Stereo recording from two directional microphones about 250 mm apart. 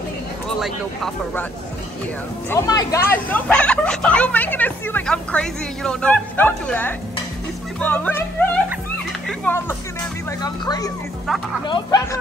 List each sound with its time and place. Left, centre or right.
0.6 s speech: centre
2.5 s speech: centre